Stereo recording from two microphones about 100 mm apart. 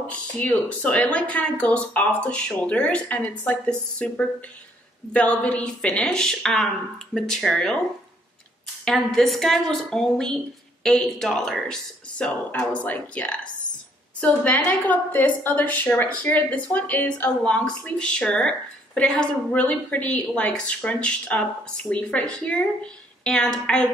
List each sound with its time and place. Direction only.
0.1 s a woman's voice: 15° left (ahead or behind)
8.8 s a woman's voice: 5° left (ahead or behind)